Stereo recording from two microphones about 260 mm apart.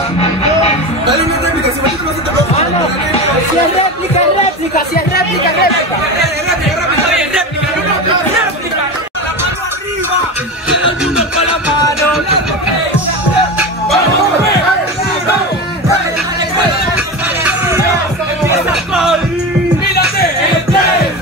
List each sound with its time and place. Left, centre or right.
0.2 s music: left
4.7 s speech: left
18.7 s music: centre